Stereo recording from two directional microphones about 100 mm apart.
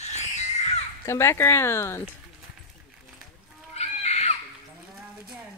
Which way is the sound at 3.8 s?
90° left.